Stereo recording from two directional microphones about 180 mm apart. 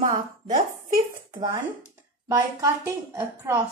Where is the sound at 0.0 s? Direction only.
45° right (ahead or behind).